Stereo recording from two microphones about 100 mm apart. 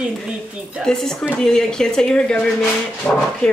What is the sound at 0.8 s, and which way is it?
A woman's voice, 5° left (ahead or behind).